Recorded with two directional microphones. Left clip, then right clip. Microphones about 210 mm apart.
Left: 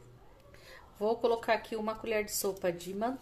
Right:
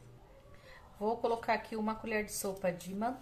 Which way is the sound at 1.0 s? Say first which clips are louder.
Left 3 dB; 40° left (ahead or behind).